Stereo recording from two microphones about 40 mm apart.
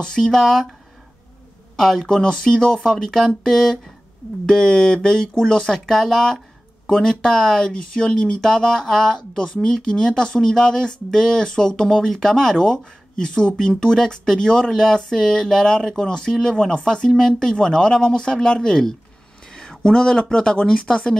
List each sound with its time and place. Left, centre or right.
0.0 s speech: centre
1.8 s speech: centre